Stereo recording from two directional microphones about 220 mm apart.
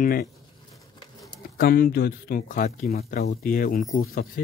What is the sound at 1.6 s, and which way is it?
Speech, 45° left (ahead or behind).